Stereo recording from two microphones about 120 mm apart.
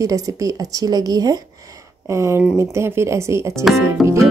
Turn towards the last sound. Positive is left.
turn(degrees=0)  # may be behind; listen again after turning